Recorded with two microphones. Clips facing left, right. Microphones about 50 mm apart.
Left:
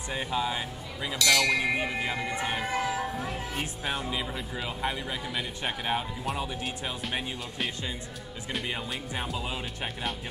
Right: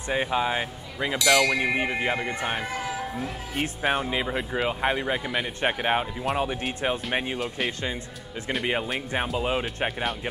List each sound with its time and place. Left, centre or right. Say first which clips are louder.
0.1 s speech: right 5 dB; right
1.1 s speech: right 3 dB; centre
1.8 s speech: right 4 dB; right
7.3 s speech: right 6 dB; centre
9.4 s speech: right 8 dB; right